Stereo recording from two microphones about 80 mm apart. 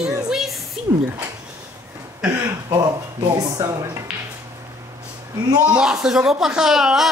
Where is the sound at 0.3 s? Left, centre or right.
Centre.